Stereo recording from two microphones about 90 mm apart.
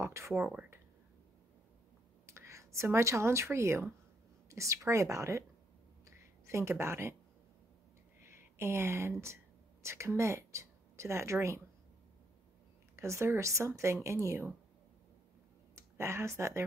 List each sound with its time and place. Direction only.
0.0 s speech: 30° right (ahead or behind)
2.2 s a woman's voice: 30° right (ahead or behind)
6.0 s a sound: 30° right (ahead or behind)
8.2 s speech: 30° right (ahead or behind)
12.9 s speech: 30° right (ahead or behind)
15.7 s speech: 30° right (ahead or behind)